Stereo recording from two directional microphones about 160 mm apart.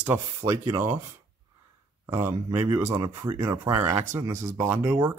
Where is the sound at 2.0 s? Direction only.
15° right (ahead or behind).